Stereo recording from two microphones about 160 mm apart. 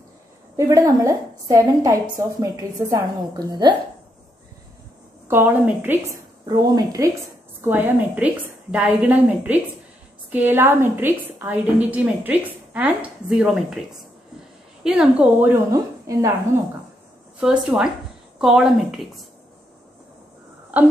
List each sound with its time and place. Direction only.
0.6 s a woman's voice: 20° right (ahead or behind)
5.3 s a woman's voice: 10° right (ahead or behind)
6.4 s a woman's voice: 25° right (ahead or behind)
7.6 s a woman's voice: 10° right (ahead or behind)
14.8 s a woman's voice: 5° right (ahead or behind)
17.4 s speech: 5° right (ahead or behind)